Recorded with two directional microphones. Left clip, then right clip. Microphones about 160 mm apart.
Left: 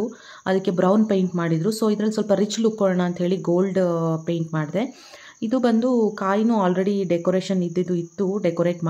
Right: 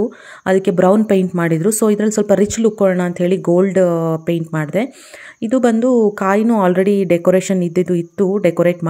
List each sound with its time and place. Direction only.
0.5 s speech: 30° right (ahead or behind)
6.1 s speech: 35° right (ahead or behind)